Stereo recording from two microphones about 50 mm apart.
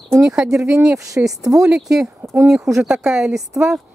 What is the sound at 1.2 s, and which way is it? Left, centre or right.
Speech, right.